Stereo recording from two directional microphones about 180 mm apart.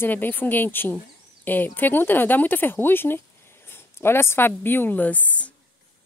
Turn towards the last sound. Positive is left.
turn(degrees=10)  # may be behind; listen again after turning